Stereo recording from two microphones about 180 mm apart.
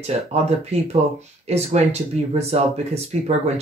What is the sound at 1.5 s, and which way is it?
Speech, 35° right (ahead or behind).